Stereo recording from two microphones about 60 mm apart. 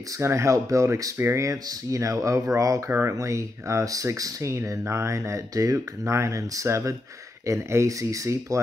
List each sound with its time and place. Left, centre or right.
0.2 s speech: right
1.1 s speech: right
2.9 s speech: right
3.2 s speech: right
4.2 s speech: right
5.5 s speech: right